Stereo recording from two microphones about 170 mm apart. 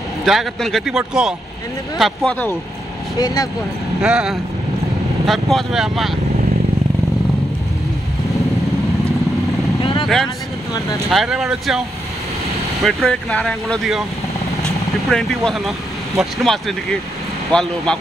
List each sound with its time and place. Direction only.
0.2 s speech: centre (ahead or behind)
3.2 s speech: 20° left (ahead or behind)
4.0 s speech: 5° right (ahead or behind)
9.8 s vehicle: 35° left (ahead or behind)
11.1 s speech: centre (ahead or behind)
12.8 s speech: centre (ahead or behind)
15.0 s speech: centre (ahead or behind)